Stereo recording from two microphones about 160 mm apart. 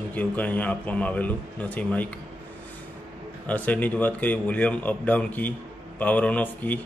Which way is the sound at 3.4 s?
10° left (ahead or behind).